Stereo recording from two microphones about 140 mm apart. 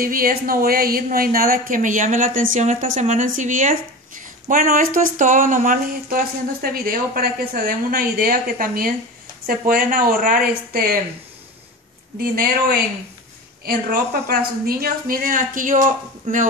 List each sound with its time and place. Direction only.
0.0 s speech: 90° right
12.2 s speech: 90° right
14.4 s speech: 90° right; by 15.8 s 75° right (ahead or behind)